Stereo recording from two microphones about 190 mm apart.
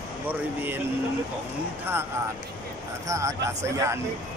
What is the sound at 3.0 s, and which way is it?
Speech, 15° right (ahead or behind).